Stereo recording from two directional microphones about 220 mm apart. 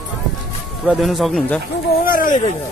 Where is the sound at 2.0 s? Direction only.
40° left (ahead or behind).